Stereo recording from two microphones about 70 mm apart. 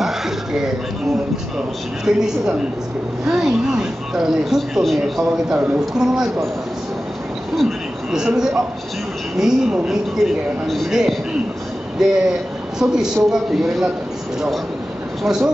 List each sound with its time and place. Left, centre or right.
0.0 s a sound: centre
2.0 s a man's voice: centre
5.5 s a man's voice: centre
7.5 s a sound: centre
9.4 s a man's voice: centre
15.2 s speech: centre